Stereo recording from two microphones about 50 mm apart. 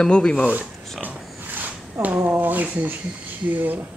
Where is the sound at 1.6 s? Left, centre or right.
Right.